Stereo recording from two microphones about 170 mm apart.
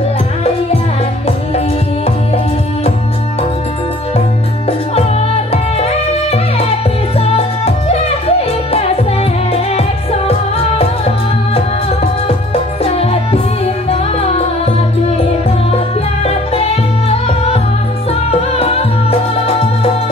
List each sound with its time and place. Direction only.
4.6 s music: 35° left (ahead or behind)
16.5 s music: 35° left (ahead or behind)